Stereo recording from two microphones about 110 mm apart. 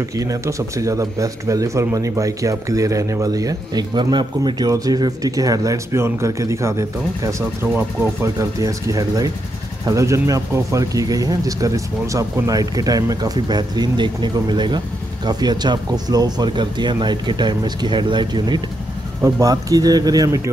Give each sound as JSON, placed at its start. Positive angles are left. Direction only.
{"t": 0.1, "sound": "speech", "side_deg": -30}
{"t": 7.6, "sound": "speech", "side_deg": -15}
{"t": 8.4, "sound": "speech", "side_deg": -30}